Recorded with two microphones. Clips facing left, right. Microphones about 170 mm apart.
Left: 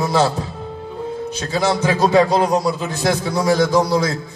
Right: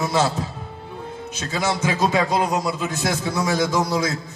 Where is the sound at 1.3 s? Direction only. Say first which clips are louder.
Left 4 dB; 35° left (ahead or behind).